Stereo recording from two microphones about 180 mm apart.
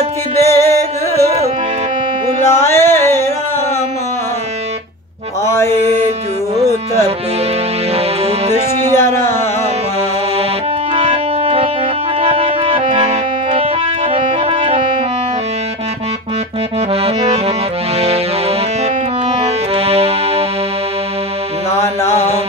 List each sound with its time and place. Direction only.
0.4 s music: 15° left (ahead or behind)
2.5 s music: 15° left (ahead or behind)
5.4 s mantra: 15° left (ahead or behind)
5.7 s music: 35° right (ahead or behind)
8.9 s a sound: 15° left (ahead or behind)
11.0 s organ: 30° right (ahead or behind)
12.2 s music: 30° right (ahead or behind)
16.9 s accordion: 35° right (ahead or behind)
19.4 s music: 35° right (ahead or behind)
21.7 s music: 15° left (ahead or behind)